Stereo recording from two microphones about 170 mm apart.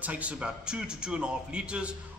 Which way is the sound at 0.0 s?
10° right (ahead or behind).